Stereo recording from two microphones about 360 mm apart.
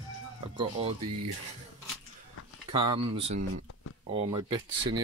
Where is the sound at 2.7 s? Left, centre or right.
Centre.